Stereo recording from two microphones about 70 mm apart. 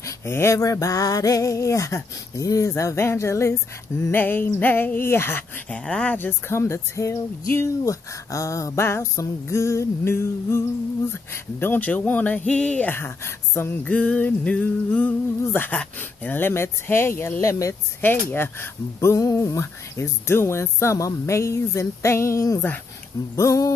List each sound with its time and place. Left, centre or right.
0.0 s speech: left
2.7 s music: left
4.1 s music: left
5.7 s speech: centre
6.1 s speech: left
6.6 s speech: left
11.6 s speech: left
12.9 s music: left
13.9 s speech: centre
16.0 s music: left
17.4 s speech: left
18.0 s speech: left